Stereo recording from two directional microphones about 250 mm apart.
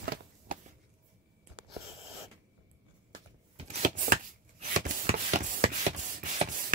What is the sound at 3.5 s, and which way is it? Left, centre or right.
Chopping, right.